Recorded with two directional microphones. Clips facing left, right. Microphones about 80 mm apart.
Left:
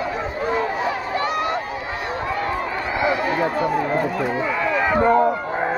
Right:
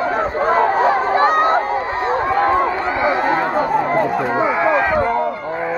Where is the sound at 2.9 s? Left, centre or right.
Right.